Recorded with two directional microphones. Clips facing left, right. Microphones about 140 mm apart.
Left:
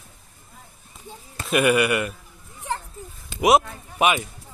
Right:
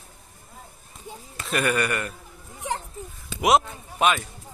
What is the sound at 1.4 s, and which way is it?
Speech, 10° left (ahead or behind).